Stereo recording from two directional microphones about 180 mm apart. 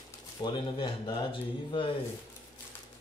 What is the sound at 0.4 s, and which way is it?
Speech, 25° left (ahead or behind).